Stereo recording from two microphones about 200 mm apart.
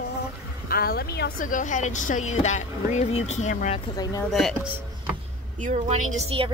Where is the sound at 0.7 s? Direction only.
50° left (ahead or behind); by 3.9 s 35° left (ahead or behind).